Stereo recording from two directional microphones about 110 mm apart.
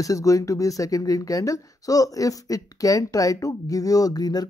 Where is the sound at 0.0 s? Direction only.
30° left (ahead or behind).